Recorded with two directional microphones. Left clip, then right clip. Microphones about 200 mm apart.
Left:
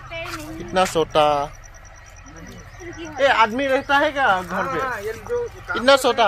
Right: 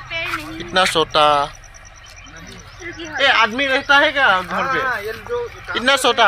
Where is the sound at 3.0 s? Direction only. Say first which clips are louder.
Right 2 dB; centre (ahead or behind).